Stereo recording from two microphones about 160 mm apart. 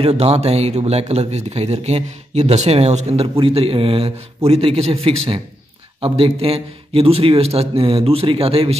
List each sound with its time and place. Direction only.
0.0 s speech: 40° right (ahead or behind)